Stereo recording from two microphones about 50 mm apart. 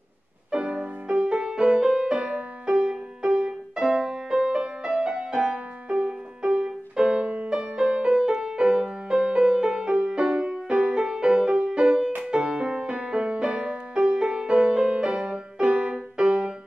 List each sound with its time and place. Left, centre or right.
0.5 s music: centre